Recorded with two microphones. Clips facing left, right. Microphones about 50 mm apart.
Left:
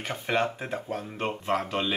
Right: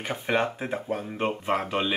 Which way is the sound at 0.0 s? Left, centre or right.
Centre.